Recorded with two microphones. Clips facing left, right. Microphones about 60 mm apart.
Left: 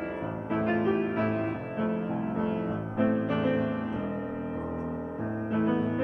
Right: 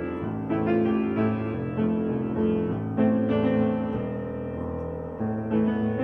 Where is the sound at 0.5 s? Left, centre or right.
Centre.